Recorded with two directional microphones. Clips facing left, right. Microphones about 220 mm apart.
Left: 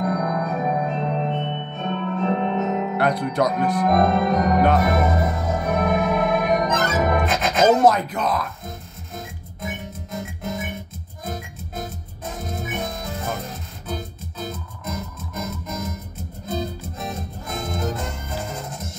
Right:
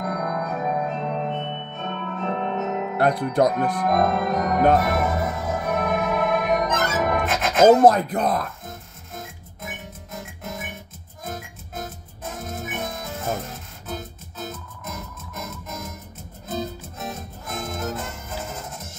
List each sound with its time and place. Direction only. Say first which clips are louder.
0.0 s music: left 4 dB; centre (ahead or behind)
7.8 s speech: right 2 dB; 55° right (ahead or behind)
8.6 s music: left 3 dB; centre (ahead or behind)